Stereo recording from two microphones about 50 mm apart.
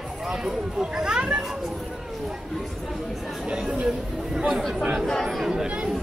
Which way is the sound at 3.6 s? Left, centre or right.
Centre.